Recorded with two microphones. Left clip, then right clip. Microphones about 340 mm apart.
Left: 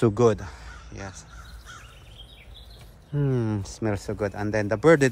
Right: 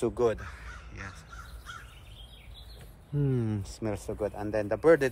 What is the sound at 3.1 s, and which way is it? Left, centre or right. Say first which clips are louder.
Speech: left 5 dB; centre.